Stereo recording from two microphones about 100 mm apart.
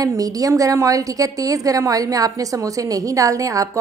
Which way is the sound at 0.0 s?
35° right (ahead or behind).